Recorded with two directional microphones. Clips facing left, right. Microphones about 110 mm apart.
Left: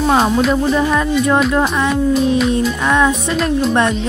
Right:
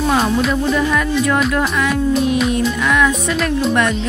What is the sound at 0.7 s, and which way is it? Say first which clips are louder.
Speech: left 2 dB; 25° left (ahead or behind).